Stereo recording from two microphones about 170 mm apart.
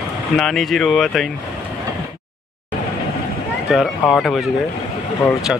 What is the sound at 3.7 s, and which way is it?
Speech, centre (ahead or behind).